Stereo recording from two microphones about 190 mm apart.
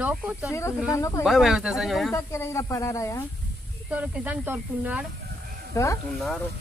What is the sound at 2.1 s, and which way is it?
Speech, 15° left (ahead or behind).